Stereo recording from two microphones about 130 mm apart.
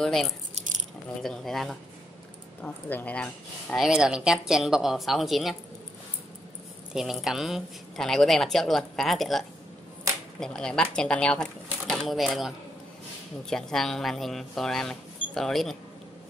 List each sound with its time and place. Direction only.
0.0 s speech: centre (ahead or behind)
3.7 s speech: 5° right (ahead or behind)
6.9 s speech: 5° right (ahead or behind)